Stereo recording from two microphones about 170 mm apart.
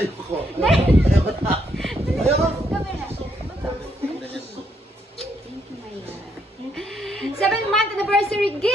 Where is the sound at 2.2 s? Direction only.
35° right (ahead or behind).